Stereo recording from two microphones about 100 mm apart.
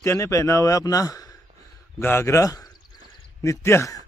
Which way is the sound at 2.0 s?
25° left (ahead or behind).